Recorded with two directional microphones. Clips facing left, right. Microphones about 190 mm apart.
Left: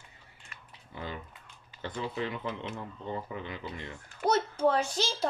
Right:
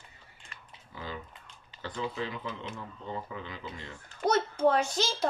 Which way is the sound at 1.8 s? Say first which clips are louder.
Left 1 dB; 20° left (ahead or behind).